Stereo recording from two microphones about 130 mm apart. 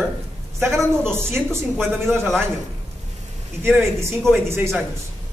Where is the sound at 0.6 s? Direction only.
15° right (ahead or behind).